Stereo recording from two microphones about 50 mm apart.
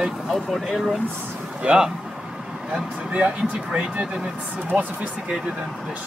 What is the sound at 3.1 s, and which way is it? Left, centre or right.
Speech, right.